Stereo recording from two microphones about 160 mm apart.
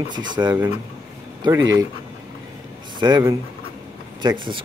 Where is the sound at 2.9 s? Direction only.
25° right (ahead or behind).